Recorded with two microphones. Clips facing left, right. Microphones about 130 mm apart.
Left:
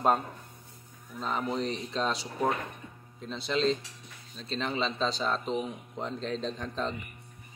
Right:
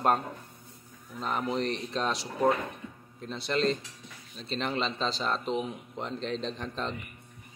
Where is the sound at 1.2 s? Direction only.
5° right (ahead or behind).